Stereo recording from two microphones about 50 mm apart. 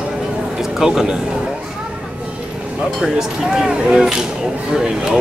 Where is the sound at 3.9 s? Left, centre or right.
Centre.